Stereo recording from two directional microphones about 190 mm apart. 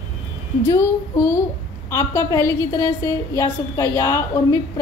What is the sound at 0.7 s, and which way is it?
A woman's voice, 15° left (ahead or behind).